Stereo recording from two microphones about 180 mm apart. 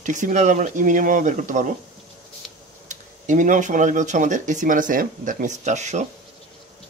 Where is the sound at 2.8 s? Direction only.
45° right (ahead or behind).